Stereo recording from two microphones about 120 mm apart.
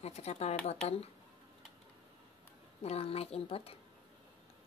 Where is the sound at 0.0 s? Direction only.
65° left (ahead or behind).